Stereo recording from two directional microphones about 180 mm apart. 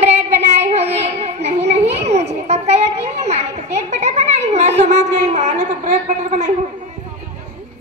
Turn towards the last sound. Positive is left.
turn(degrees=-40)  # may be behind; listen again after turning